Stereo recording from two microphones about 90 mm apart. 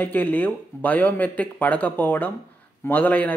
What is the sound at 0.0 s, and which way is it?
Speech, 20° left (ahead or behind).